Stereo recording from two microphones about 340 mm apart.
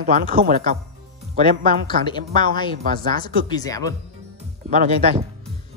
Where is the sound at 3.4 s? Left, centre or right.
Centre.